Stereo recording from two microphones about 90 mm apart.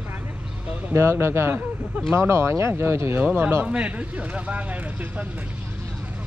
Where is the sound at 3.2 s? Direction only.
15° right (ahead or behind).